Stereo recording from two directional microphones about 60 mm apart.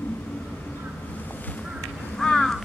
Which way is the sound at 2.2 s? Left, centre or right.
Centre.